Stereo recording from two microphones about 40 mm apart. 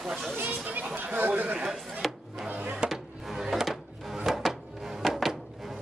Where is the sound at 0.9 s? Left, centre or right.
Right.